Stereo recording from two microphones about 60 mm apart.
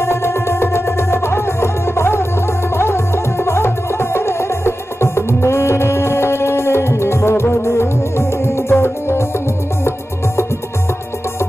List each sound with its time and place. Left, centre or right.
0.0 s music: left